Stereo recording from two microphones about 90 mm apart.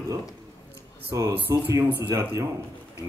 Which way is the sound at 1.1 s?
40° right (ahead or behind).